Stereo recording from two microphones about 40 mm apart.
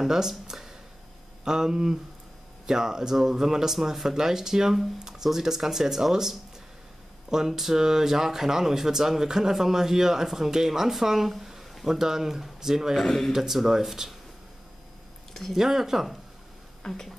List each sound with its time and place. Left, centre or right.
0.0 s speech: centre
13.0 s speech: centre
13.3 s speech: centre
15.5 s speech: centre
16.8 s speech: centre